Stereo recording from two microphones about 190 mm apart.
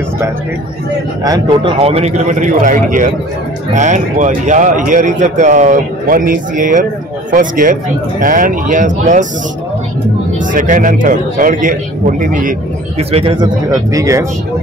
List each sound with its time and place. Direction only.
1.2 s speech: 20° right (ahead or behind)
1.8 s a man's voice: 30° right (ahead or behind)
10.4 s speech: 45° right (ahead or behind)
13.1 s speech: 25° right (ahead or behind)
13.9 s speech: 15° right (ahead or behind)